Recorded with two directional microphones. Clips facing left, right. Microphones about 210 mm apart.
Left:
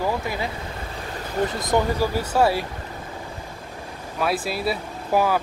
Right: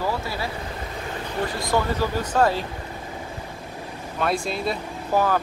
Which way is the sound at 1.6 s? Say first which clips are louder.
Left 1 dB; 20° left (ahead or behind).